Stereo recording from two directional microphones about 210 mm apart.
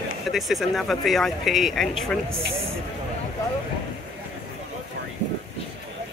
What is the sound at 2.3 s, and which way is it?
Speech, 25° right (ahead or behind).